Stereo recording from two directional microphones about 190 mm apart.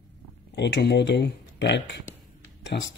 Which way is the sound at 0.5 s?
65° left (ahead or behind).